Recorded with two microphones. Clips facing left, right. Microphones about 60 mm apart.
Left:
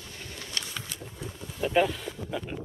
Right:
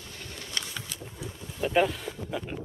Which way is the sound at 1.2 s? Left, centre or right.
Centre.